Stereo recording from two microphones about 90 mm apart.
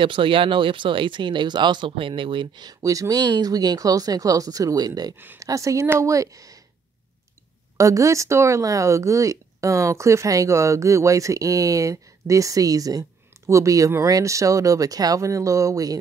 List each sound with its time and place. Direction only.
0.0 s speech: 70° right (ahead or behind)
2.8 s speech: 40° right (ahead or behind)
5.4 s speech: 35° right (ahead or behind)
7.7 s speech: 35° right (ahead or behind)